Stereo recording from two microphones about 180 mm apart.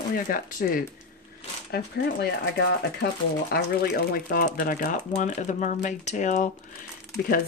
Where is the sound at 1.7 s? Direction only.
65° left (ahead or behind).